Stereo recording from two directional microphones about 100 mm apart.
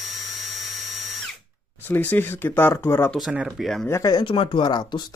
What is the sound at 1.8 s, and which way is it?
Speech, 20° left (ahead or behind).